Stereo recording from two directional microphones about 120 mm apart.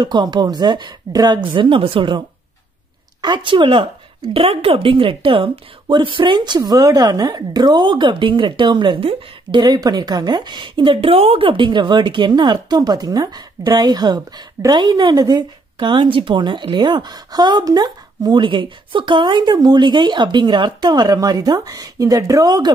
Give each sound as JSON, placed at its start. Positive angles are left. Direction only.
{"t": 0.0, "sound": "speech", "side_deg": -40}